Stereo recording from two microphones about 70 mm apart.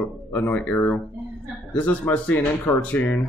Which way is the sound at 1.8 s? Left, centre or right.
Left.